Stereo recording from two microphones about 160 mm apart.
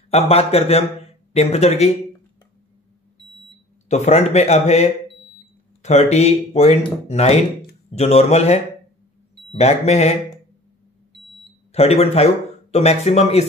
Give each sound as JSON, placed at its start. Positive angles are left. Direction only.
{"t": 0.1, "sound": "speech", "side_deg": 40}
{"t": 3.9, "sound": "speech", "side_deg": 45}
{"t": 11.7, "sound": "speech", "side_deg": 40}